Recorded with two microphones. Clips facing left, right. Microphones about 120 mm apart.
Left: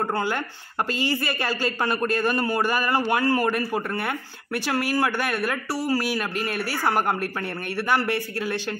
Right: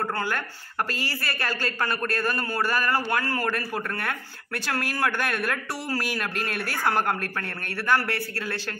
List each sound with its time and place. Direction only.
0.1 s a man's voice: 15° left (ahead or behind)